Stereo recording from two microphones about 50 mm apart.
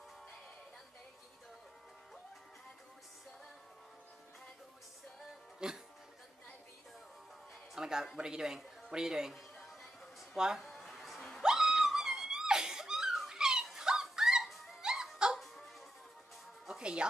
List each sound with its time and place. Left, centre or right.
5.6 s speech: centre
7.7 s speech: centre
10.3 s speech: centre
10.6 s a sound: centre
11.4 s a sound: centre
13.4 s dog: centre
14.4 s music: centre
14.8 s music: centre
15.3 s music: centre
16.6 s music: centre